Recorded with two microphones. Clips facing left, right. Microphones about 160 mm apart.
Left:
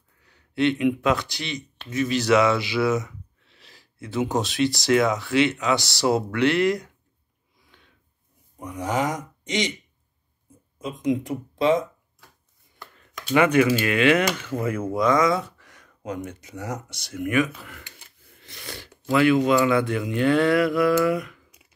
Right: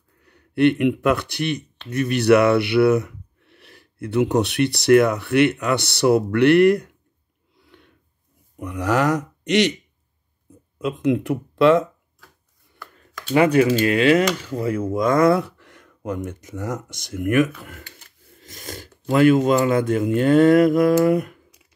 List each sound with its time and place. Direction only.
0.2 s speech: 60° right (ahead or behind)
7.5 s snort: 65° right (ahead or behind)
8.5 s speech: 65° right (ahead or behind)
10.8 s speech: 65° right (ahead or behind)
13.3 s speech: 35° right (ahead or behind)
15.0 s speech: 55° right (ahead or behind)